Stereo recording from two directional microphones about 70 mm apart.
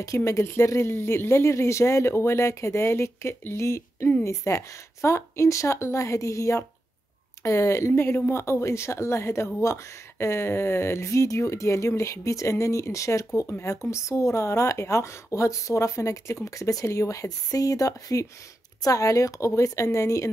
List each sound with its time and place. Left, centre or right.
0.0 s speech: left